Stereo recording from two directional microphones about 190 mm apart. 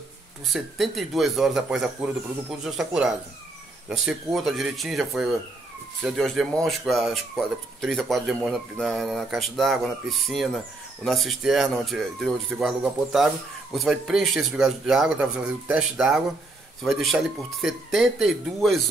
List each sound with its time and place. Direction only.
0.5 s speech: centre (ahead or behind)